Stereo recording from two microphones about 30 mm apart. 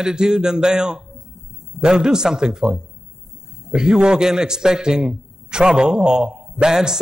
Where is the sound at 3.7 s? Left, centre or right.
Right.